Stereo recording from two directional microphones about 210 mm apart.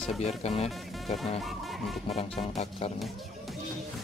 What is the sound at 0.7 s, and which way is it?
Speech, centre (ahead or behind).